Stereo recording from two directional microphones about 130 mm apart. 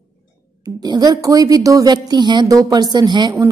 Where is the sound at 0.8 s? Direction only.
30° right (ahead or behind).